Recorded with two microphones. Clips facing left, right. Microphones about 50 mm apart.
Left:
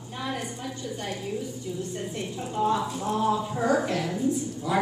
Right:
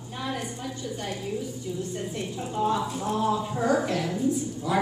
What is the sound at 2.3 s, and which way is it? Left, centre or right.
A woman's voice, centre.